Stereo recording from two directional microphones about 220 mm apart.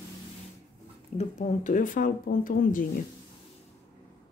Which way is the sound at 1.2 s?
35° left (ahead or behind).